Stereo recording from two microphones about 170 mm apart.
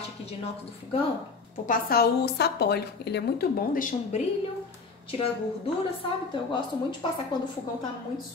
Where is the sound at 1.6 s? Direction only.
65° left (ahead or behind).